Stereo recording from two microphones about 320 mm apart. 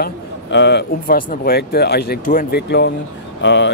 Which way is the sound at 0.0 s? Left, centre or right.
Left.